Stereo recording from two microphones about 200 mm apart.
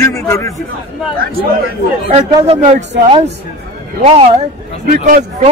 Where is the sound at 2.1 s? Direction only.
30° right (ahead or behind).